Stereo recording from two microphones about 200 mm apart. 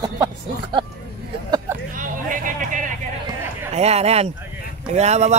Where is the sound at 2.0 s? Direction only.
40° right (ahead or behind).